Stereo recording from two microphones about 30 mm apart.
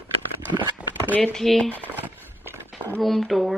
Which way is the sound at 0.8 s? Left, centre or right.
Right.